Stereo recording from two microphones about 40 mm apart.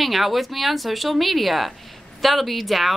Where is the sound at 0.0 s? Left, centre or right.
Centre.